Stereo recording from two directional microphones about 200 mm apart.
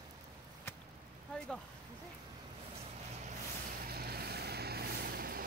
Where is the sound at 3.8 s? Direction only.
50° right (ahead or behind).